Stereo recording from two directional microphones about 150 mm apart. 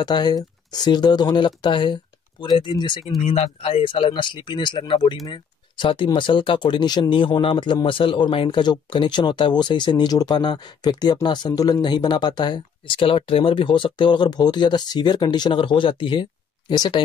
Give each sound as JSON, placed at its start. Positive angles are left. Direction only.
{"t": 0.0, "sound": "speech", "side_deg": 30}